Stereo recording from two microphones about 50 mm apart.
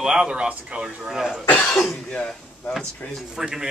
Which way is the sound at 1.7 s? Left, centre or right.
Centre.